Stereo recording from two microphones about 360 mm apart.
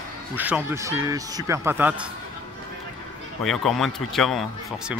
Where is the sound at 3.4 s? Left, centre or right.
Centre.